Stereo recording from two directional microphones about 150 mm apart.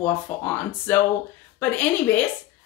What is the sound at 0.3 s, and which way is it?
Speech, 15° left (ahead or behind).